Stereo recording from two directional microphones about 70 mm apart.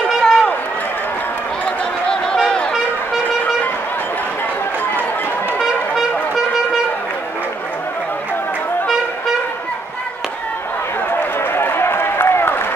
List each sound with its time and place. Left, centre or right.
0.2 s run: centre
2.0 s a sound: centre
5.6 s trumpet: centre
11.1 s run: left